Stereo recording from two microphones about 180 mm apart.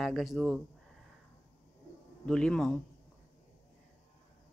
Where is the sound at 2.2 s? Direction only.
5° left (ahead or behind).